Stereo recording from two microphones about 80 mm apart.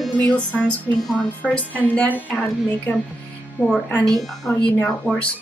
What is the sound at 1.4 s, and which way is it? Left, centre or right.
A woman's voice, centre.